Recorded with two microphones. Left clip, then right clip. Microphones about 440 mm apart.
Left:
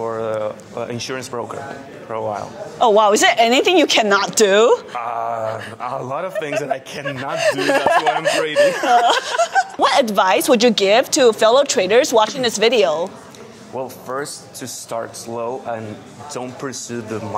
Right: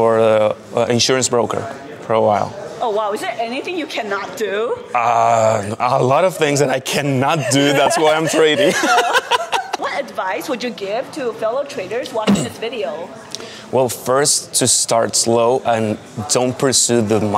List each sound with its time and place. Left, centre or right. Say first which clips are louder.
0.0 s speech: right 9 dB; right
2.8 s a woman's voice: left 7 dB; left
4.9 s a man's voice: right 9 dB; right
7.7 s a woman's voice: right 2 dB; left
8.7 s speech: even; right
9.3 s snicker: right 1 dB; right
9.8 s speech: left 7 dB; left
13.7 s a man's voice: right 10 dB; right